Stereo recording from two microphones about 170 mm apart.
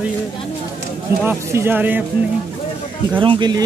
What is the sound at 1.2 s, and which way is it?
Speech, 15° right (ahead or behind).